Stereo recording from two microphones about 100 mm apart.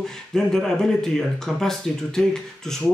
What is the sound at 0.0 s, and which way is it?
Speech, 5° left (ahead or behind).